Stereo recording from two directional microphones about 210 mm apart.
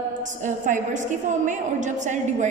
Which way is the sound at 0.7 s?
35° right (ahead or behind).